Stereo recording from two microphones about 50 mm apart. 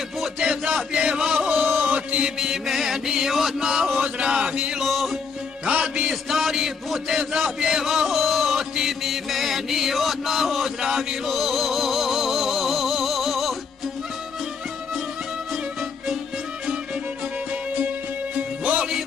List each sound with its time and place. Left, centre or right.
0.4 s a sound: centre
0.9 s chant: centre
1.9 s mantra: right
2.2 s mantra: centre
4.8 s music: centre
5.7 s music: centre
6.2 s chant: centre
18.6 s music: right